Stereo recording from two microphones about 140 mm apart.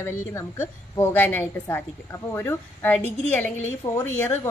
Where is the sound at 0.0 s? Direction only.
20° left (ahead or behind).